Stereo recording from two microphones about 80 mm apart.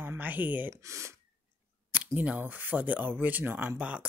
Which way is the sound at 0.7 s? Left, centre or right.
Right.